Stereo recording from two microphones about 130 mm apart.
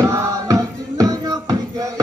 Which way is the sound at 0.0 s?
25° right (ahead or behind).